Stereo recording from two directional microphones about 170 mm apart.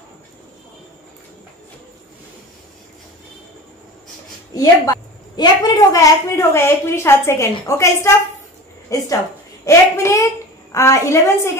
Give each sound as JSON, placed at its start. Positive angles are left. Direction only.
{"t": 4.6, "sound": "a woman's voice", "side_deg": 25}